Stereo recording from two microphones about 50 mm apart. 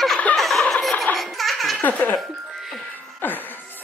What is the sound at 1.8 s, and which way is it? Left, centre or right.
Speech, left.